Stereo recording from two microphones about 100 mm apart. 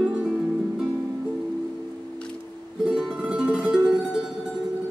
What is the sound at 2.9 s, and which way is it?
Music, 10° right (ahead or behind).